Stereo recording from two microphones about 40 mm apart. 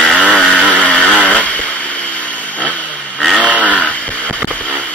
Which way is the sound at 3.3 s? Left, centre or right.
Left.